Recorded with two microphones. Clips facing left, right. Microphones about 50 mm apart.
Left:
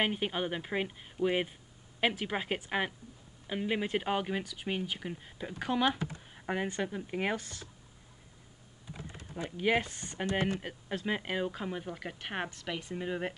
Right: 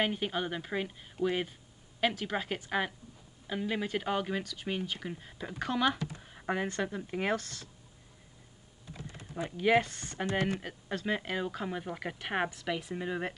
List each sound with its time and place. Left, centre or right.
0.0 s speech: centre
9.6 s speech: centre